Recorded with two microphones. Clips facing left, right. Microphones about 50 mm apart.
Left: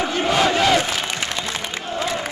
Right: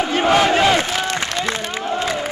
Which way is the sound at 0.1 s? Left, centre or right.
Right.